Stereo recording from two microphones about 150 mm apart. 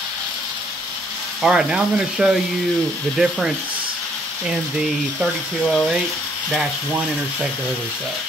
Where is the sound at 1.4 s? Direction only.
5° right (ahead or behind).